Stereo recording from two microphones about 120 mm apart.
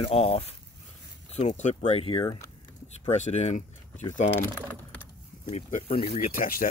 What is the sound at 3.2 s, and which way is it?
Speech, 70° left (ahead or behind).